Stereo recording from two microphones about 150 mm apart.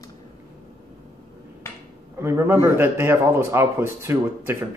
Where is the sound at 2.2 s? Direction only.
15° right (ahead or behind).